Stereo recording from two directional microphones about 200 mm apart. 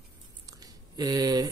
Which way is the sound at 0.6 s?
20° right (ahead or behind).